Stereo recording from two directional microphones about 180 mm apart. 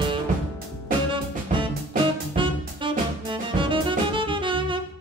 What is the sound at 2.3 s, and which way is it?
Music, 30° right (ahead or behind).